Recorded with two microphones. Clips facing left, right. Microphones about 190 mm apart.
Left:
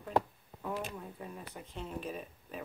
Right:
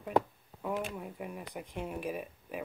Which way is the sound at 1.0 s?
15° right (ahead or behind).